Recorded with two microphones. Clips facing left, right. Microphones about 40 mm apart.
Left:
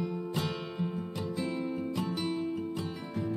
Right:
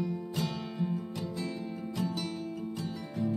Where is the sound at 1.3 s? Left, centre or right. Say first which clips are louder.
Left 4 dB; left.